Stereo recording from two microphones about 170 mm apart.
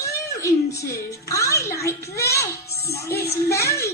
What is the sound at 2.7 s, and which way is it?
Speech, 70° left (ahead or behind).